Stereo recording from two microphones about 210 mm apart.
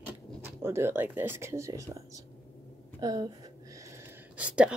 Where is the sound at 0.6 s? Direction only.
10° right (ahead or behind).